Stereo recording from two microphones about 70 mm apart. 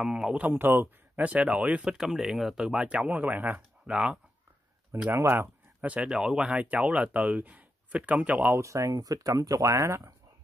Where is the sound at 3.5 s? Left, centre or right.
Centre.